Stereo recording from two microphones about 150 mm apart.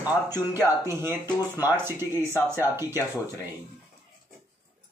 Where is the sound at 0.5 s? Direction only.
15° right (ahead or behind).